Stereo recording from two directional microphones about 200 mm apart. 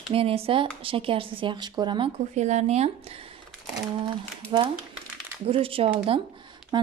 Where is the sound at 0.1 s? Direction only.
30° right (ahead or behind).